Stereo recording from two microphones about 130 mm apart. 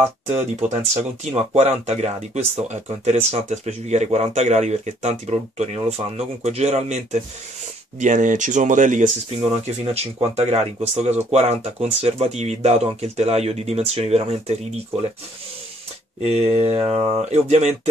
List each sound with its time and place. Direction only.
0.9 s speech: 55° right (ahead or behind)
8.0 s speech: 75° right (ahead or behind)
9.9 s speech: 50° right (ahead or behind)
16.2 s speech: 55° right (ahead or behind)